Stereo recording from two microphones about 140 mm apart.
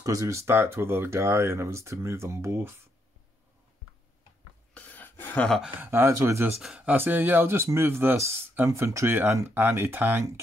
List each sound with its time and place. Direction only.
0.0 s speech: 20° right (ahead or behind)
4.7 s a sound: 10° left (ahead or behind)
5.6 s speech: 15° right (ahead or behind)
6.6 s speech: 10° right (ahead or behind)